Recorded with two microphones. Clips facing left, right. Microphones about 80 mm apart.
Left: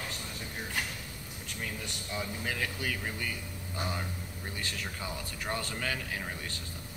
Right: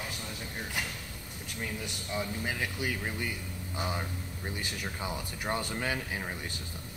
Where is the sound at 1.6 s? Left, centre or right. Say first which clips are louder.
Right 2 dB; centre.